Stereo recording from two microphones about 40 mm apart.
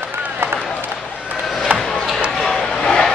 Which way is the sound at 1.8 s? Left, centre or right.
Centre.